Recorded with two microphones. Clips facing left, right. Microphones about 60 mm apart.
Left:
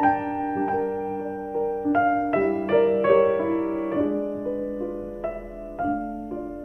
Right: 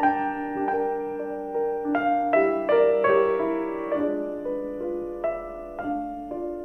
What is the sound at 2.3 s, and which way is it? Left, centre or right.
Music, right.